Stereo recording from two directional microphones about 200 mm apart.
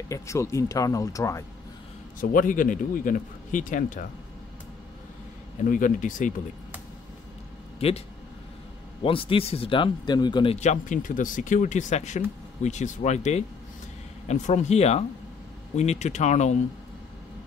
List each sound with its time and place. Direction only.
0.1 s speech: 15° left (ahead or behind)
2.1 s a man's voice: 40° left (ahead or behind)
5.6 s a man's voice: 40° left (ahead or behind)
7.8 s speech: 30° left (ahead or behind)
9.0 s a man's voice: 25° left (ahead or behind)